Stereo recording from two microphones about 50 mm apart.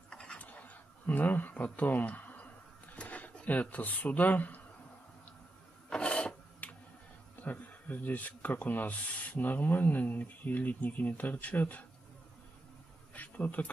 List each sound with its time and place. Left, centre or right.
0.1 s a sound: centre
0.4 s a sound: left
3.4 s speech: left
5.9 s filing: left
7.4 s speech: left
13.1 s insect: left